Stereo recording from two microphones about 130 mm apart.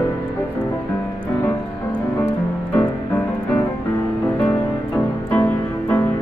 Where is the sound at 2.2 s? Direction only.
20° left (ahead or behind).